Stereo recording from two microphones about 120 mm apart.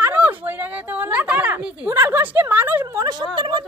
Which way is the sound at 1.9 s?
20° right (ahead or behind).